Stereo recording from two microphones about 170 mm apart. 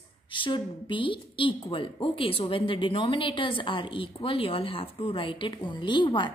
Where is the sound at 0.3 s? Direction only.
30° left (ahead or behind).